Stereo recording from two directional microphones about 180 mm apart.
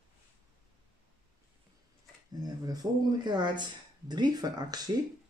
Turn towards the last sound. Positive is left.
turn(degrees=-20)  # may be behind; listen again after turning